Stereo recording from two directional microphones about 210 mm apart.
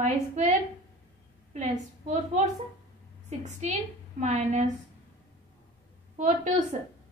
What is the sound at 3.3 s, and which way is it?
A woman's voice, 35° right (ahead or behind).